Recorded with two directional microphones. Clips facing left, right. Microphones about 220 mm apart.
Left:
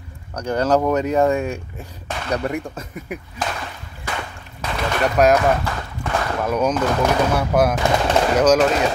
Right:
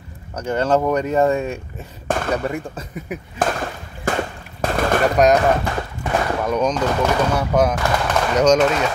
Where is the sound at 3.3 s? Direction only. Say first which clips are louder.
Right 8 dB; 50° right (ahead or behind).